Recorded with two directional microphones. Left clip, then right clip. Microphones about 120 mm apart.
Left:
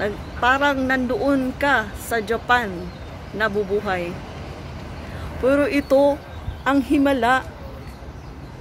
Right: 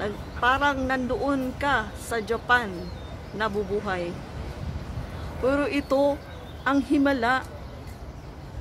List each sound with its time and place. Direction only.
0.0 s a man's voice: 20° left (ahead or behind)
5.4 s speech: 15° left (ahead or behind)